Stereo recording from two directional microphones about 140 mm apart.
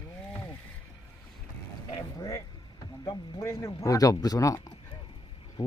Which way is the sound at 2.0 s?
25° left (ahead or behind).